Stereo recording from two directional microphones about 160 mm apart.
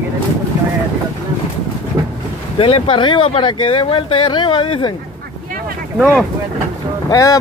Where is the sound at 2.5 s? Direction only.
35° left (ahead or behind).